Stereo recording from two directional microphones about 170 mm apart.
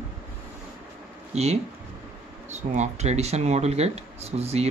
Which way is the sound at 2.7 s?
40° right (ahead or behind).